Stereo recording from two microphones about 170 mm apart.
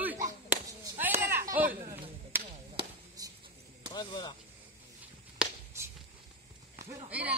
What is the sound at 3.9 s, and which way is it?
Speech, 25° left (ahead or behind).